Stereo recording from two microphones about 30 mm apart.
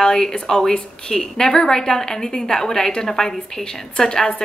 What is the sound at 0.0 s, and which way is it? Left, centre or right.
A woman's voice, centre.